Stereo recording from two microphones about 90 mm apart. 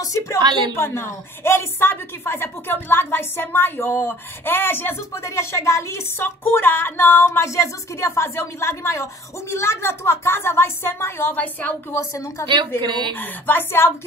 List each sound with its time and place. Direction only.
0.0 s a woman's voice: 40° left (ahead or behind)
0.4 s a woman's voice: 55° right (ahead or behind)
0.7 s a woman's voice: 30° left (ahead or behind)
11.9 s a woman's voice: 35° left (ahead or behind)
12.8 s a woman's voice: 60° right (ahead or behind)
13.1 s a woman's voice: 20° left (ahead or behind)